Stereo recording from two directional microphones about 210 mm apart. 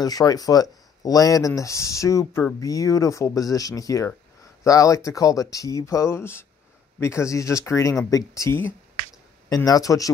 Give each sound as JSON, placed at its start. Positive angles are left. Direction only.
{"t": 0.0, "sound": "speech", "side_deg": 15}